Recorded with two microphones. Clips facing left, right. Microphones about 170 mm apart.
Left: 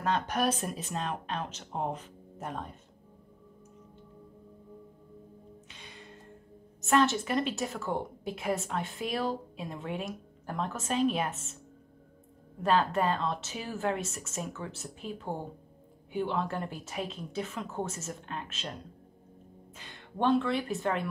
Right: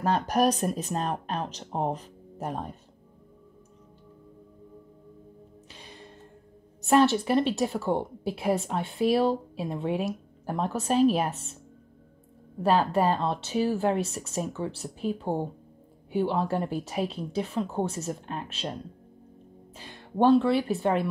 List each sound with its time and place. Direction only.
0.0 s speech: 40° right (ahead or behind)
6.8 s speech: 35° right (ahead or behind)
9.9 s a sound: 5° right (ahead or behind)
10.5 s speech: 35° right (ahead or behind)
12.6 s speech: 35° right (ahead or behind)